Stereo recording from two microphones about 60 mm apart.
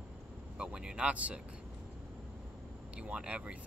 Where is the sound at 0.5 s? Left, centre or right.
Centre.